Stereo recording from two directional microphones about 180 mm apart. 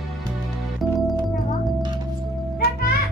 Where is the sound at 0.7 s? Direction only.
Centre (ahead or behind).